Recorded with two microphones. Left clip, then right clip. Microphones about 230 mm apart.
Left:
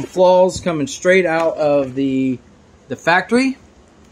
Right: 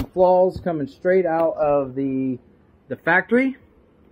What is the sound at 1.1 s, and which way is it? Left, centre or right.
Speech, centre.